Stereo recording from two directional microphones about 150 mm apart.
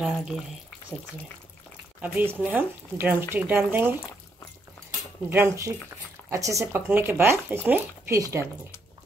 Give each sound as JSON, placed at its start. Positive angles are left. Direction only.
{"t": 0.0, "sound": "speech", "side_deg": -5}
{"t": 2.0, "sound": "speech", "side_deg": -10}
{"t": 5.3, "sound": "speech", "side_deg": -15}